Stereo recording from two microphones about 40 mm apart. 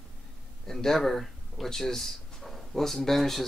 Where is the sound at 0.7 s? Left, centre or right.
Centre.